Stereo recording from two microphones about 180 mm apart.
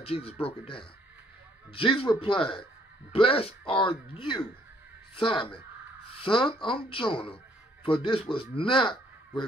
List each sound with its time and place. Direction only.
0.0 s speech: 35° left (ahead or behind)